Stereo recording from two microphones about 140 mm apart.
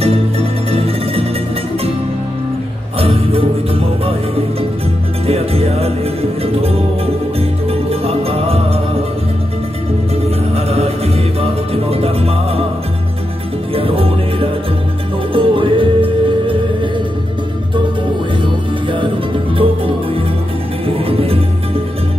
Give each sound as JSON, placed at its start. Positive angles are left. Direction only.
{"t": 0.0, "sound": "music", "side_deg": -45}
{"t": 3.0, "sound": "music", "side_deg": -45}
{"t": 7.9, "sound": "music", "side_deg": -45}
{"t": 10.5, "sound": "music", "side_deg": -45}
{"t": 13.7, "sound": "music", "side_deg": -40}
{"t": 18.4, "sound": "music", "side_deg": -35}